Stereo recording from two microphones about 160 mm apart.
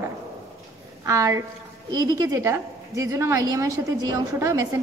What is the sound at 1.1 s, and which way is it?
A woman's voice, 20° right (ahead or behind).